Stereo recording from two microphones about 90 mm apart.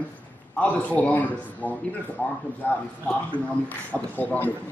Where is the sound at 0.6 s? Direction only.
15° left (ahead or behind).